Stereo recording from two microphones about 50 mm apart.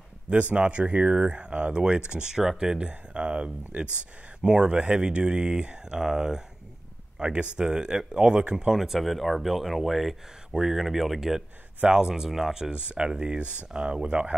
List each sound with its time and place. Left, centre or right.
0.3 s speech: right
2.9 s speech: right
8.7 s speech: centre
12.7 s speech: right